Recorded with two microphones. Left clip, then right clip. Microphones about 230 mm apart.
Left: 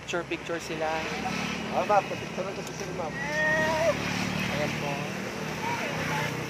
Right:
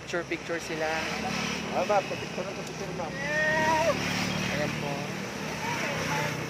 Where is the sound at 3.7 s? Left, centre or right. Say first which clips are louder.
Right 1 dB; right.